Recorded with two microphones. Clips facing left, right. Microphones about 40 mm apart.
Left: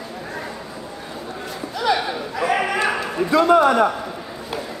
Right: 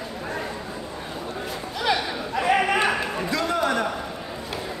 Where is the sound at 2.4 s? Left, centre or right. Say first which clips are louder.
Even; right.